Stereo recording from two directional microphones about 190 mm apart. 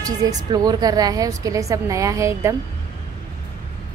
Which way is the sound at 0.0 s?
20° right (ahead or behind).